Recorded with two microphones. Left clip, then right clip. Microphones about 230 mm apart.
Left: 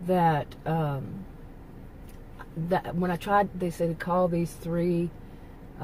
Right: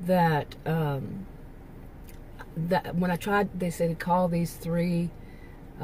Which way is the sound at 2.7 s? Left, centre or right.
Centre.